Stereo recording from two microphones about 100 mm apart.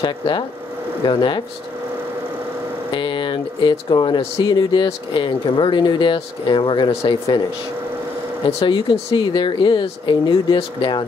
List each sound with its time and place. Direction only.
0.0 s speech: 50° left (ahead or behind)
2.9 s speech: 55° left (ahead or behind)
8.6 s speech: 55° left (ahead or behind)